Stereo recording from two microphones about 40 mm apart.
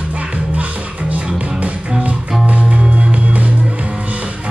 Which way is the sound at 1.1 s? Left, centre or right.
Right.